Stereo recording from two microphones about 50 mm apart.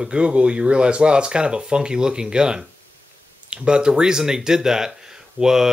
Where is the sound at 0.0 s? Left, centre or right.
Right.